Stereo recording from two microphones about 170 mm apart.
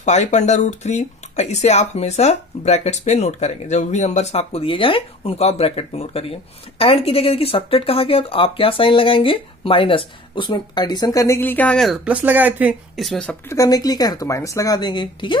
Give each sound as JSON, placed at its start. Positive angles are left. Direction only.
{"t": 0.0, "sound": "speech", "side_deg": 40}
{"t": 13.6, "sound": "speech", "side_deg": 20}